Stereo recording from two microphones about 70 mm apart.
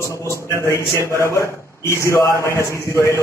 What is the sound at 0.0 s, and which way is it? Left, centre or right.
A man's voice, left.